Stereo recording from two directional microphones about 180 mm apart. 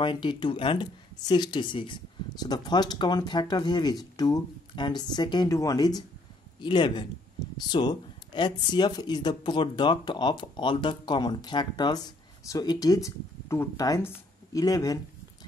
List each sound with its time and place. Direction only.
0.0 s speech: 25° left (ahead or behind)